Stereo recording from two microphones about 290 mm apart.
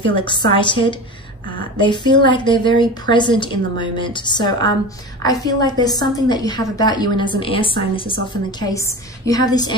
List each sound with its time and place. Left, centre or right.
0.0 s a woman's voice: centre